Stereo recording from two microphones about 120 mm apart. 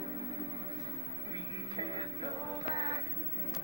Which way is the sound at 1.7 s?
40° right (ahead or behind).